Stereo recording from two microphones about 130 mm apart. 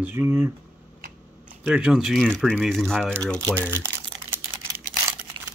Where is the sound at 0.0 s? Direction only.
20° right (ahead or behind).